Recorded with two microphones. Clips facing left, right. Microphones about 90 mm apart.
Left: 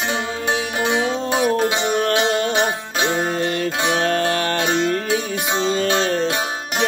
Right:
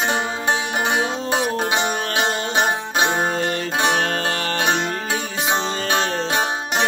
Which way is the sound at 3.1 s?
35° right (ahead or behind).